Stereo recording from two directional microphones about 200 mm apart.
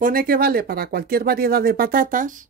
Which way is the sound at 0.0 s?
45° right (ahead or behind).